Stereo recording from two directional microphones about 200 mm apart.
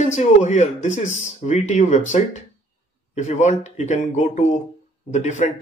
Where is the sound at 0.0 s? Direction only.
35° left (ahead or behind).